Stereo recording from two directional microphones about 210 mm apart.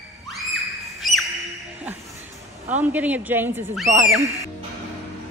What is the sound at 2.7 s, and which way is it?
Speech, 5° right (ahead or behind).